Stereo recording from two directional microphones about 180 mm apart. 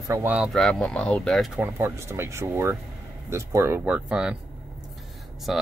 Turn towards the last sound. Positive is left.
turn(degrees=0)  # may be behind; listen again after turning